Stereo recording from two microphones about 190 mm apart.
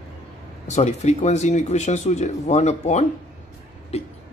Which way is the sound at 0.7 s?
35° left (ahead or behind).